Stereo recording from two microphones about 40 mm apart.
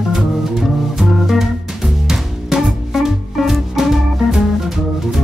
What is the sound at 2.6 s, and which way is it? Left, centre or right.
Music, centre.